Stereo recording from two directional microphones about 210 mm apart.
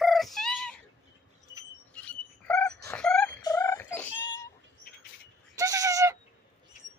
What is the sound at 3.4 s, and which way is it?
Turkey, 15° left (ahead or behind).